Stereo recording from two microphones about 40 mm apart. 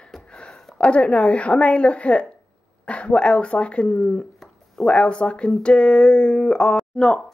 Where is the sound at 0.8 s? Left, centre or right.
Left.